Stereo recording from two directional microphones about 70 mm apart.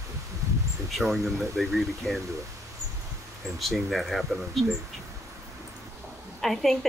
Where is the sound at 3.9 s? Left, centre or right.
Centre.